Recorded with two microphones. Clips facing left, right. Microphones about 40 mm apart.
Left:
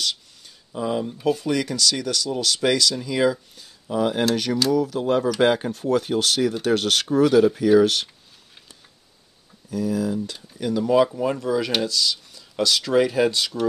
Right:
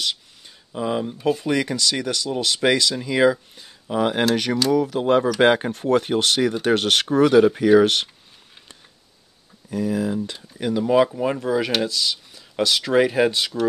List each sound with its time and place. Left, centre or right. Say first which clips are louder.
0.7 s speech: right 1 dB; right
9.7 s speech: right 1 dB; right